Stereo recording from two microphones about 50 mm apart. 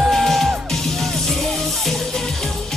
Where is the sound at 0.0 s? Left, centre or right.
Centre.